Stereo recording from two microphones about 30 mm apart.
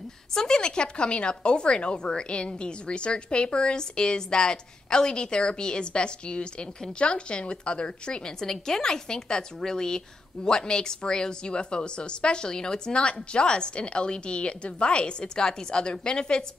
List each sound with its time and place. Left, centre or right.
0.3 s speech: left
8.4 s a woman's voice: centre